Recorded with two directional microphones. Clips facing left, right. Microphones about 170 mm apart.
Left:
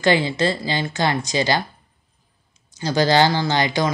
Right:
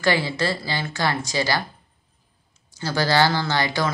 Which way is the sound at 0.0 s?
20° left (ahead or behind).